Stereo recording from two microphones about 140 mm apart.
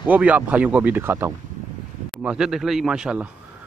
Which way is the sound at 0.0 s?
10° right (ahead or behind).